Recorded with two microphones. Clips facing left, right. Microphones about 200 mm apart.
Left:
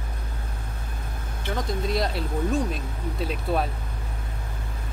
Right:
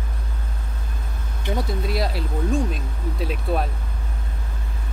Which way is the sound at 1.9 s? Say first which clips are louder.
Right 1 dB; centre (ahead or behind).